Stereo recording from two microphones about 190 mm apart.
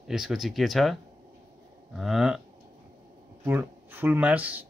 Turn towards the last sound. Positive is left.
turn(degrees=-10)  # may be behind; listen again after turning